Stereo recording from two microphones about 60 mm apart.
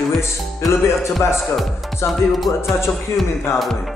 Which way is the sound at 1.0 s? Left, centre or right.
Left.